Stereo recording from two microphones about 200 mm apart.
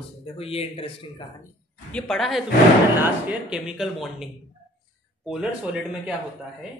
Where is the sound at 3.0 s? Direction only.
10° right (ahead or behind).